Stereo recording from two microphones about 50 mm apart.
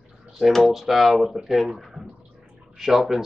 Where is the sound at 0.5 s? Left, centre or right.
Centre.